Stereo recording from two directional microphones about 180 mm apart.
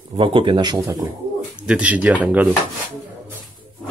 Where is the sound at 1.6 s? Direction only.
5° right (ahead or behind).